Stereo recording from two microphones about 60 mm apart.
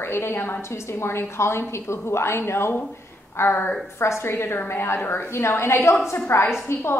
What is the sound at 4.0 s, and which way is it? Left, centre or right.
A woman's voice, left.